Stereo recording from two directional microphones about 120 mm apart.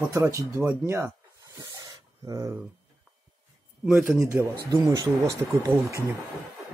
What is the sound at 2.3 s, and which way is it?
Speech, 30° right (ahead or behind).